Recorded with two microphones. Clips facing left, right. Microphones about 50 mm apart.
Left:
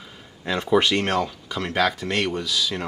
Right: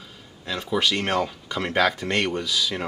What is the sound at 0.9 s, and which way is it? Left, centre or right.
Speech, centre.